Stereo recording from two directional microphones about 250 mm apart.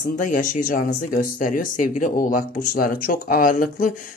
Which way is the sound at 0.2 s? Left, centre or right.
Left.